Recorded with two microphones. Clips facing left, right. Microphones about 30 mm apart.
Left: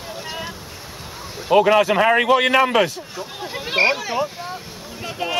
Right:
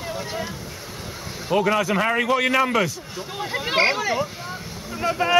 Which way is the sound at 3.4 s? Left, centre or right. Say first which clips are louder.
Left 1 dB; centre.